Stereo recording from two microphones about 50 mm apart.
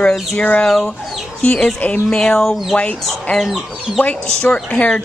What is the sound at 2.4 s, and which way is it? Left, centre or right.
Speech, centre.